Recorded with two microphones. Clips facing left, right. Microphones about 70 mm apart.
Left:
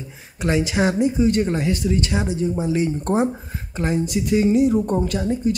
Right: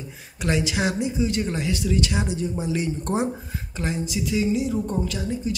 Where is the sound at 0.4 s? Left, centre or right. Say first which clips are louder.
Left 4 dB; left.